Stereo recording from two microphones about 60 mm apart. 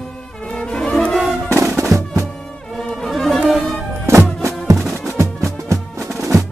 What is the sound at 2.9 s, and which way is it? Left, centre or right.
Music, centre.